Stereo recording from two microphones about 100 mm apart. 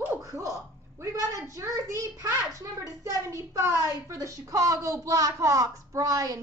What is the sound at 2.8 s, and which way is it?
A woman's voice, 30° right (ahead or behind).